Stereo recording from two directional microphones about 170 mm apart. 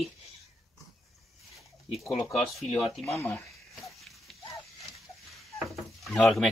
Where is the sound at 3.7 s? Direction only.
Centre (ahead or behind).